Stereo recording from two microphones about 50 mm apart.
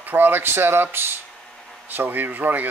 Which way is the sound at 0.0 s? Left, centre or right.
Right.